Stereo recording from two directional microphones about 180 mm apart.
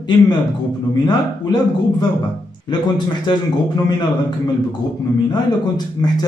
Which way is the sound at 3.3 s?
25° left (ahead or behind).